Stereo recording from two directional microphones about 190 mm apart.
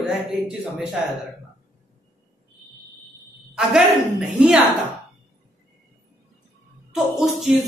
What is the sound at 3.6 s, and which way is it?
A woman's voice, 5° right (ahead or behind).